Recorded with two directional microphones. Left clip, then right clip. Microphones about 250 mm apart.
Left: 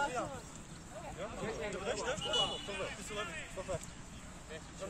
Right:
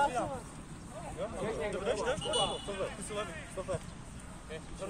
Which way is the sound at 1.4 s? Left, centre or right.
Right.